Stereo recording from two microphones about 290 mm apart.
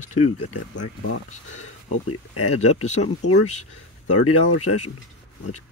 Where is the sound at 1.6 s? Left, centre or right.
Left.